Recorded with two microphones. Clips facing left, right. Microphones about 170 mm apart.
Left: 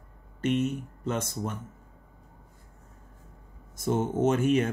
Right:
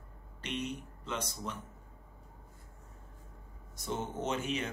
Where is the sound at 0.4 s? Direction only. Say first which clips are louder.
Left 11 dB; 45° left (ahead or behind).